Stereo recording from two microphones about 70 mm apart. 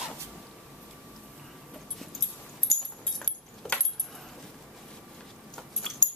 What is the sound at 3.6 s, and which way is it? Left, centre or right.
Keys jangling, centre.